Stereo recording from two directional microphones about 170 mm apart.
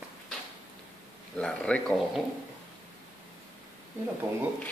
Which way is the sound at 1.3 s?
5° left (ahead or behind).